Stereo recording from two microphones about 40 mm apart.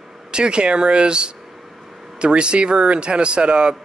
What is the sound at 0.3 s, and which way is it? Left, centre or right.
A man's voice, right.